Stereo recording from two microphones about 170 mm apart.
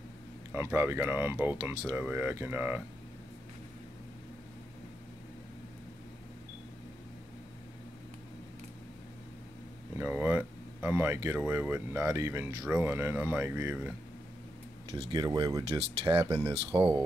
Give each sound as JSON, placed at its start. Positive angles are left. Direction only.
{"t": 0.5, "sound": "speech", "side_deg": -15}
{"t": 9.9, "sound": "speech", "side_deg": -10}
{"t": 14.9, "sound": "speech", "side_deg": -25}
{"t": 16.0, "sound": "speech", "side_deg": -35}